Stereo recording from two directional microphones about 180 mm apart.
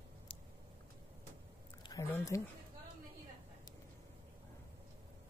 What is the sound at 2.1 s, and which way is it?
Speech, 15° left (ahead or behind).